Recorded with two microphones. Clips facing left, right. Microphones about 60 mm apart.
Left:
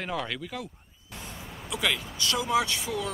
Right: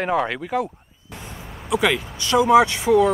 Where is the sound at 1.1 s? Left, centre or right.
Right.